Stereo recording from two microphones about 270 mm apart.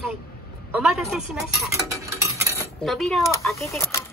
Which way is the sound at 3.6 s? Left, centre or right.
Centre.